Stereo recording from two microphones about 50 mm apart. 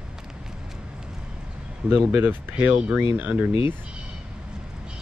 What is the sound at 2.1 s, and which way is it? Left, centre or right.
Speech, right.